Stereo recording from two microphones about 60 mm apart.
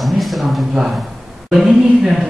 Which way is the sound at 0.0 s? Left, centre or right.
Centre.